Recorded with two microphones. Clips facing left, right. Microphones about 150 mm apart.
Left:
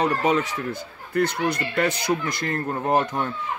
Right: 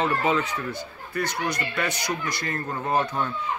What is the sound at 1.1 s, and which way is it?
Speech, 60° left (ahead or behind).